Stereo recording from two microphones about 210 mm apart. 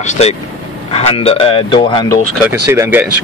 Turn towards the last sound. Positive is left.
turn(degrees=-10)  # may be behind; listen again after turning